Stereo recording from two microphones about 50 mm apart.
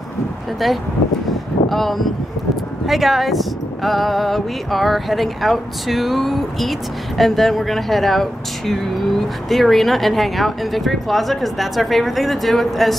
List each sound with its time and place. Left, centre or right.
0.6 s speech: centre